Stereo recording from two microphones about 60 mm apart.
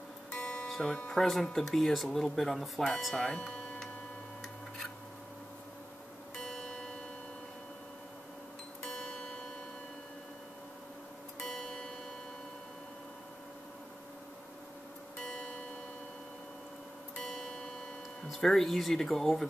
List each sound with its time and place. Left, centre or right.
0.3 s music: centre
0.7 s music: centre
0.9 s speech: centre
6.3 s music: centre
11.4 s music: centre
15.1 s music: centre
17.2 s music: centre
18.3 s speech: centre